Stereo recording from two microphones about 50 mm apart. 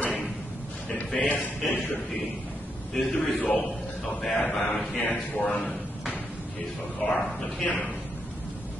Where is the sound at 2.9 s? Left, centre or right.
Centre.